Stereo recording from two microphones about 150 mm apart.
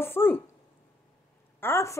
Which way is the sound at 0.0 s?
15° left (ahead or behind).